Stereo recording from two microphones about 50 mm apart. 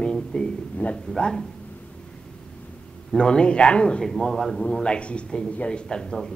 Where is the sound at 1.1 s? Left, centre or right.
Centre.